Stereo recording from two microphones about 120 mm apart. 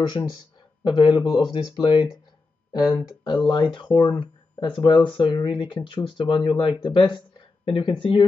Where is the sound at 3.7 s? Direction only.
40° left (ahead or behind).